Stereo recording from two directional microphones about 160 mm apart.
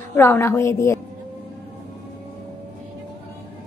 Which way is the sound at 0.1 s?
15° left (ahead or behind).